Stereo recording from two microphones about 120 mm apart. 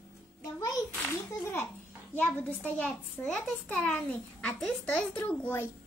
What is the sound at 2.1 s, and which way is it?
A child's voice, 15° left (ahead or behind).